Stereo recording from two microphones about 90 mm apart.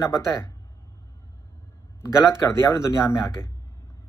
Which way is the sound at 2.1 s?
35° left (ahead or behind).